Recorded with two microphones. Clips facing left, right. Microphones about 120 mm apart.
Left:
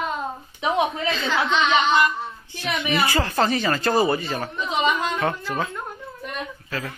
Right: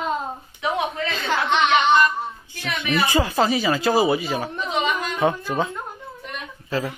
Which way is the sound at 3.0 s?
15° right (ahead or behind).